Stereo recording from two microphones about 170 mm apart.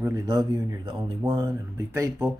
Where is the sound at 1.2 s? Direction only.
20° right (ahead or behind).